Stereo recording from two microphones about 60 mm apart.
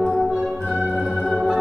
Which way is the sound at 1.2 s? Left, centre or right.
Centre.